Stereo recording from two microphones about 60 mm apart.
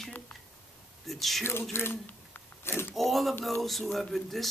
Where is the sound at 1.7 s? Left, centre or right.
Left.